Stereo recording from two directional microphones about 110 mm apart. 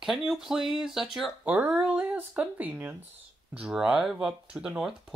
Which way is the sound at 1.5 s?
15° right (ahead or behind).